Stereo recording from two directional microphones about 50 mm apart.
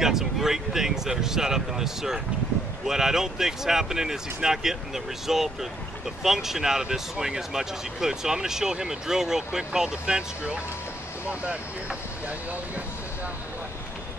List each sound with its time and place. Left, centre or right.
0.0 s speech: centre; by 12.8 s right